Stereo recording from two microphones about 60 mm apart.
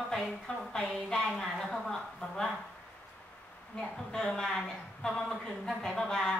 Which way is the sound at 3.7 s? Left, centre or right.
Centre.